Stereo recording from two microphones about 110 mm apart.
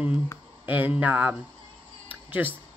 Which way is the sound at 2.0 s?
15° right (ahead or behind).